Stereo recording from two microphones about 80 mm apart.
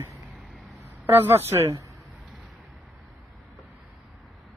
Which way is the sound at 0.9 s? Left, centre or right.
Right.